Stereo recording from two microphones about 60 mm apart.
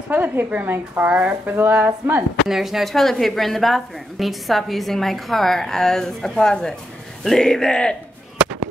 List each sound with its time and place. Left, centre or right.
0.1 s a woman's voice: right
1.5 s a sound: right
1.9 s speech: right
2.4 s speech: centre